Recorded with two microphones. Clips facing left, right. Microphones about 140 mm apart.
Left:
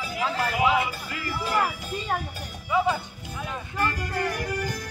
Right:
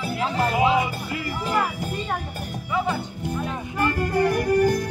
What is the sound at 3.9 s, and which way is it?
Music, 50° right (ahead or behind).